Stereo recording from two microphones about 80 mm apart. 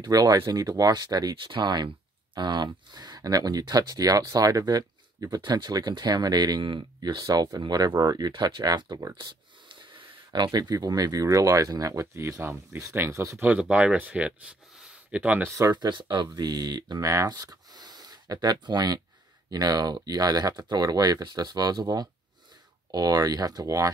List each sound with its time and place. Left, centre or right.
0.0 s speech: right
1.3 s speech: right
8.3 s speech: right
9.1 s speech: right
13.5 s speech: centre
15.7 s speech: right
16.3 s speech: right
17.0 s speech: right
17.3 s a sound: right
19.5 s speech: right